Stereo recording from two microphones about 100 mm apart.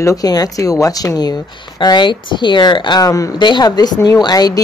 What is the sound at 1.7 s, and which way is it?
A woman's voice, 50° left (ahead or behind).